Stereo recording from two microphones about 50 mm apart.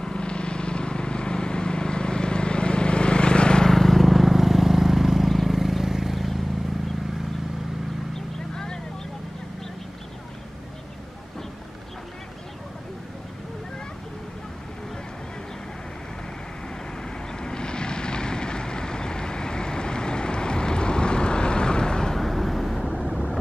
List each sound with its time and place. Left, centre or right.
0.0 s vehicle: centre
3.7 s vehicle: centre
17.3 s vehicle: centre